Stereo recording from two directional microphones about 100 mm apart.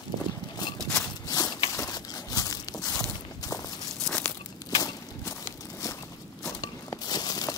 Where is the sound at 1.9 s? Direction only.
40° left (ahead or behind).